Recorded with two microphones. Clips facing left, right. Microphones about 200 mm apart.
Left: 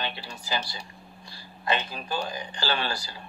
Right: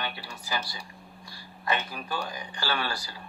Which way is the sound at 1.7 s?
25° left (ahead or behind).